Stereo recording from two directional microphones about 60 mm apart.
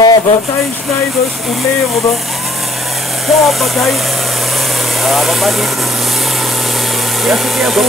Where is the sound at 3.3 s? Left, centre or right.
Centre.